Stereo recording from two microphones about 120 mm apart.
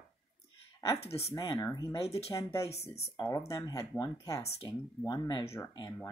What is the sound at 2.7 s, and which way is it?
Speech, 60° left (ahead or behind).